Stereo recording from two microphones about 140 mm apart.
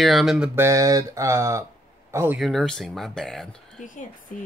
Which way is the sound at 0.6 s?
20° right (ahead or behind).